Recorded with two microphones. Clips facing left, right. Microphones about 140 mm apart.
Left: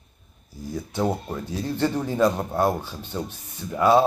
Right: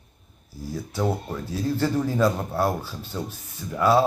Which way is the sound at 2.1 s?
20° left (ahead or behind).